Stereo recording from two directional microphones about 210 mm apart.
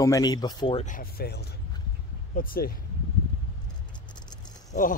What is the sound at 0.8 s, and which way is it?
Speech, 40° left (ahead or behind).